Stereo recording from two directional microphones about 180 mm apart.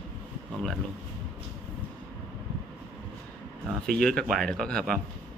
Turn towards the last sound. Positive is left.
turn(degrees=5)  # may be behind; listen again after turning